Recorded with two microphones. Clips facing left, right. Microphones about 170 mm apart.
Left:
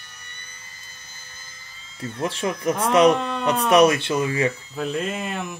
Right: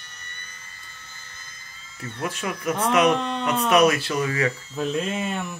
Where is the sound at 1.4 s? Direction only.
30° left (ahead or behind).